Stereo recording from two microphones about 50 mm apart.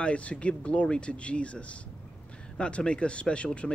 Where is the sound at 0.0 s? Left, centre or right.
Left.